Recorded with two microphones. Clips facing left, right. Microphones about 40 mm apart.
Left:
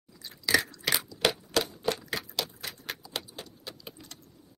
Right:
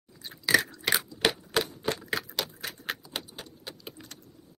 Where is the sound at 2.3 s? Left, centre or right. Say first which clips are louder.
Right 1 dB; right.